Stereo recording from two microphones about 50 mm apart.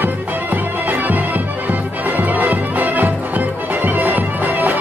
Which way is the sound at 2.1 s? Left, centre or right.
Right.